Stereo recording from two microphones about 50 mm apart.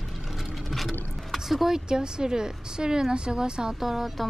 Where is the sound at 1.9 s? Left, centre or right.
Centre.